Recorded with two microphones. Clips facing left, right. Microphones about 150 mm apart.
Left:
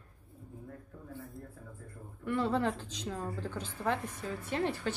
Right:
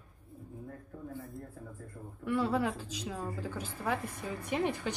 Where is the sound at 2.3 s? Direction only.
10° right (ahead or behind).